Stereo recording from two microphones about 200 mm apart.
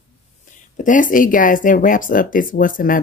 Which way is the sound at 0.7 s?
40° left (ahead or behind).